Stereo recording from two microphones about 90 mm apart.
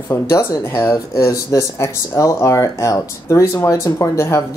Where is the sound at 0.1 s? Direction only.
30° left (ahead or behind).